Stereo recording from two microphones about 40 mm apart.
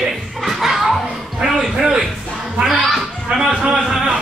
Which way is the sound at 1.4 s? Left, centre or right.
Centre.